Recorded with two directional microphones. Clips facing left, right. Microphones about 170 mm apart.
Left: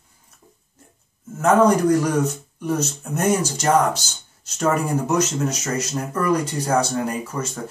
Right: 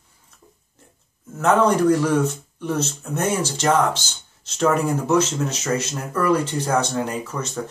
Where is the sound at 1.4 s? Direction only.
10° left (ahead or behind).